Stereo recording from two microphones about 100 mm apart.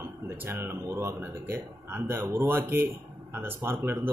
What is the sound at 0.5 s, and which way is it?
Speech, 25° right (ahead or behind).